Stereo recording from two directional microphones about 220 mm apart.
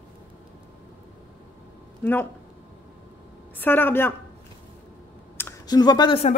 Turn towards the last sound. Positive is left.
turn(degrees=25)  # may be behind; listen again after turning